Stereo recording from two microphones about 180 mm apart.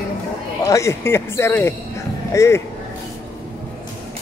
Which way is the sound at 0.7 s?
15° left (ahead or behind).